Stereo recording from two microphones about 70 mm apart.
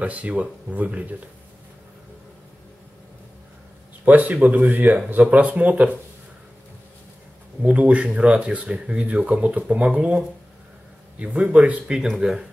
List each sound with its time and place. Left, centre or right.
0.0 s speech: centre
4.0 s speech: right
7.6 s speech: centre